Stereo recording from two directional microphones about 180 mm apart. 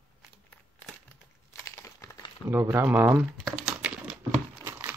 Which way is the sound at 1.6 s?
15° left (ahead or behind).